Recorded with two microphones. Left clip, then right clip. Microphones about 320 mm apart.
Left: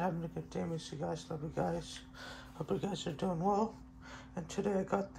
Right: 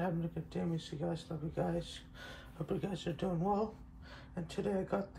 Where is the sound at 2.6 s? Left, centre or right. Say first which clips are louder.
Left 1 dB; centre.